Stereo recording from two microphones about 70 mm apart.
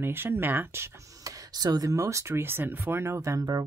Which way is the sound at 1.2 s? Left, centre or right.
Right.